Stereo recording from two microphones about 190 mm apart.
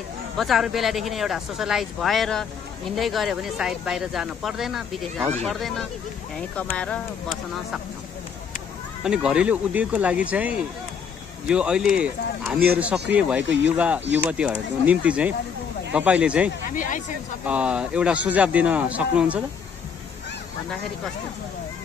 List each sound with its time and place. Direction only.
0.4 s speech: centre (ahead or behind)
9.0 s a man's voice: 5° right (ahead or behind)
13.4 s speech: 75° right (ahead or behind)
13.7 s a man's voice: 5° right (ahead or behind)
16.7 s speech: 45° left (ahead or behind)
17.5 s a man's voice: 5° right (ahead or behind)